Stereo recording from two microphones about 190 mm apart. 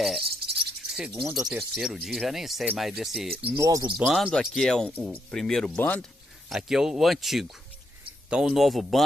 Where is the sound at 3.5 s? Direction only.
15° right (ahead or behind).